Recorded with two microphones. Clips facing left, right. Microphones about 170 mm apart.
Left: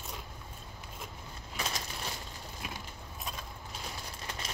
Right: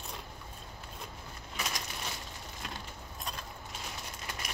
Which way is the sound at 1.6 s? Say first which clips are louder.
Left 1 dB; 30° left (ahead or behind).